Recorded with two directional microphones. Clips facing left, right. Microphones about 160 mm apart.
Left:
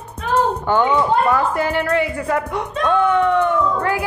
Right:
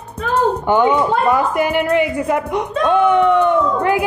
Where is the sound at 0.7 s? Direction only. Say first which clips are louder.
Right 2 dB; 15° right (ahead or behind).